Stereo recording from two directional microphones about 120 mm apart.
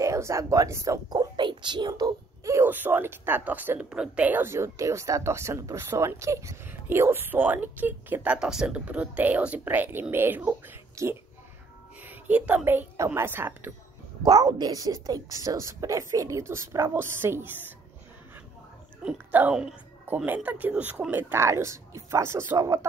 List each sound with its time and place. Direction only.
0.0 s speech: 25° right (ahead or behind)
14.2 s speech: 35° right (ahead or behind); by 17.5 s 20° right (ahead or behind)
19.0 s speech: 15° right (ahead or behind)